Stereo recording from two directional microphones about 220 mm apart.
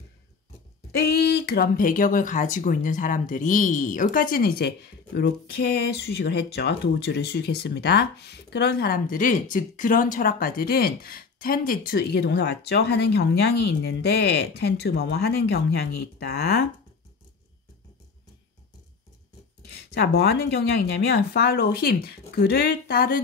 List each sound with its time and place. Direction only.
0.9 s speech: 45° left (ahead or behind)
19.9 s speech: 45° left (ahead or behind)